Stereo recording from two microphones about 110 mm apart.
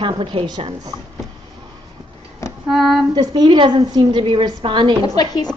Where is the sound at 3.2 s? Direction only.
45° right (ahead or behind).